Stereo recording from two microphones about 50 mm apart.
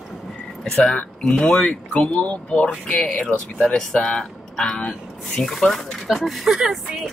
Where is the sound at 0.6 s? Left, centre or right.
Centre.